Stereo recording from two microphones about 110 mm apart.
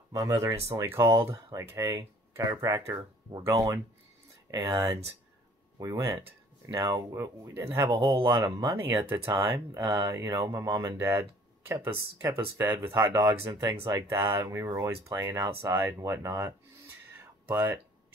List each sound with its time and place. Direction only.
0.1 s speech: 30° right (ahead or behind)
1.8 s speech: 40° right (ahead or behind)
2.3 s speech: 25° right (ahead or behind)
6.2 s a sound: 30° right (ahead or behind)
6.8 s speech: 35° right (ahead or behind); by 17.7 s 20° right (ahead or behind)